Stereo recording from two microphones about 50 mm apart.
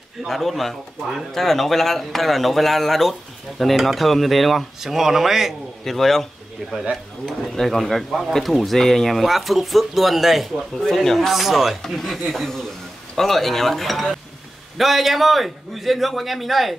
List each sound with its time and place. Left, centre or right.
0.3 s speech: centre
5.9 s speech: centre